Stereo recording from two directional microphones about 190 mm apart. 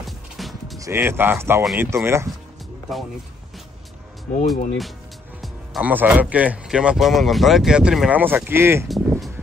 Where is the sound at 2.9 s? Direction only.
Centre (ahead or behind).